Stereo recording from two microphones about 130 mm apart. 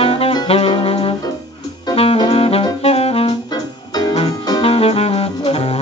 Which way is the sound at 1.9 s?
50° left (ahead or behind).